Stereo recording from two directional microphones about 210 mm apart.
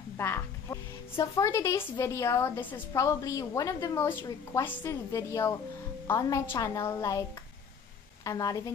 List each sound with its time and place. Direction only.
0.2 s a woman's voice: 10° left (ahead or behind)